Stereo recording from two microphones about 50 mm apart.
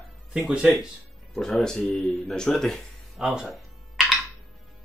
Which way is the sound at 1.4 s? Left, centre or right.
Centre.